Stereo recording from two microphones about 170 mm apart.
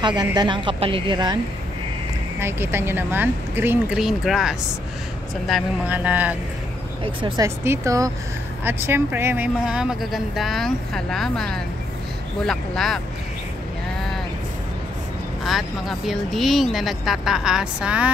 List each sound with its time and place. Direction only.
0.0 s a woman's voice: 25° right (ahead or behind)
2.4 s speech: 15° right (ahead or behind)
7.2 s a woman's voice: 30° right (ahead or behind)
7.4 s speech: 15° right (ahead or behind); by 13.0 s centre (ahead or behind)
16.1 s speech: centre (ahead or behind)